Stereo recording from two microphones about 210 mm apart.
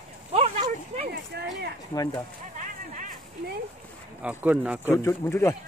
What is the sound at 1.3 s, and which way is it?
Speech, 50° right (ahead or behind).